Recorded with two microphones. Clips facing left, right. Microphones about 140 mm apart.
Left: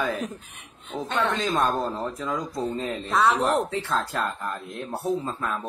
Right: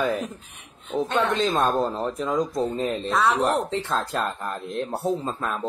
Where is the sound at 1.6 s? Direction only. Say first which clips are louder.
Right 2 dB; 20° right (ahead or behind).